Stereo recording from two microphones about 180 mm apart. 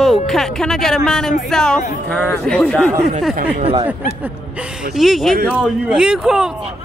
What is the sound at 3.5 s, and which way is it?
Speech, 35° right (ahead or behind).